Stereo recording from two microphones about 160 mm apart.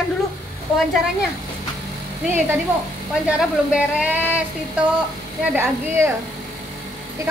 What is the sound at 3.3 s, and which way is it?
A woman's voice, 5° right (ahead or behind).